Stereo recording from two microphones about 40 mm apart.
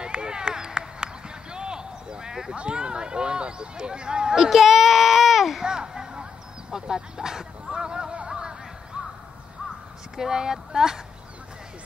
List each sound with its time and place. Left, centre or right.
0.0 s run: right
2.5 s speech: right
4.5 s a sound: centre
5.6 s children playing: centre
6.7 s a sound: centre
9.0 s crow: right
10.1 s speech: centre